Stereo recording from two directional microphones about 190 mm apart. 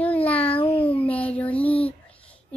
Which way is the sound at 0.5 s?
30° left (ahead or behind).